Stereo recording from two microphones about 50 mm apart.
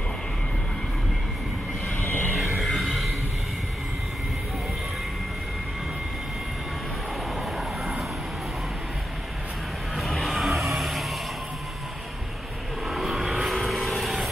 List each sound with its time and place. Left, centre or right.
2.0 s vehicle: left
2.3 s music: centre
7.5 s vehicle: centre
9.9 s vehicle: centre
12.9 s vehicle: centre